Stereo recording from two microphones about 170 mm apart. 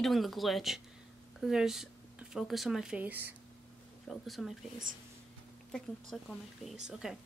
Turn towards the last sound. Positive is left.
turn(degrees=0)  # may be behind; listen again after turning